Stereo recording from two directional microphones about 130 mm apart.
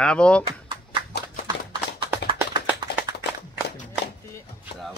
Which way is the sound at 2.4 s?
15° right (ahead or behind).